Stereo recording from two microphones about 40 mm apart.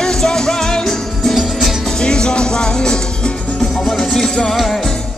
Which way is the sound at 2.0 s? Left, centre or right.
Left.